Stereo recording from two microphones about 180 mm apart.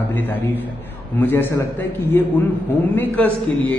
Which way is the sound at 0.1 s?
10° left (ahead or behind).